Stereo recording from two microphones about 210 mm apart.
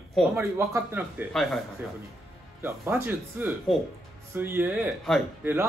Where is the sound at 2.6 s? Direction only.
10° right (ahead or behind).